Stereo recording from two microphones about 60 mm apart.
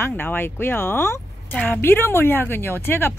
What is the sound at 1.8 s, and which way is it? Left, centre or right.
Speech, left.